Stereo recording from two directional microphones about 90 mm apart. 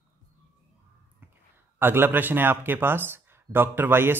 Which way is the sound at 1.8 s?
25° right (ahead or behind).